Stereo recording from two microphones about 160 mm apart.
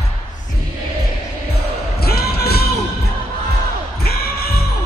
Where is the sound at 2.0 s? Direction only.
75° left (ahead or behind).